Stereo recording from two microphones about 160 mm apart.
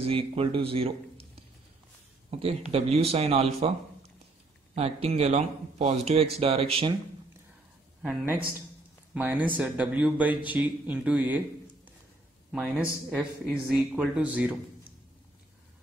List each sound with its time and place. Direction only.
0.0 s speech: 35° right (ahead or behind)
2.7 s a man's voice: 40° right (ahead or behind)
4.7 s a man's voice: 40° right (ahead or behind)
8.0 s a woman's voice: 5° right (ahead or behind)